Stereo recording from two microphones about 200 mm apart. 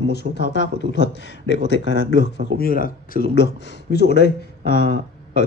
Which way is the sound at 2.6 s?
45° left (ahead or behind).